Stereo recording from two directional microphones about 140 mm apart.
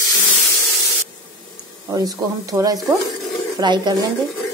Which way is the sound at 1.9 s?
25° right (ahead or behind).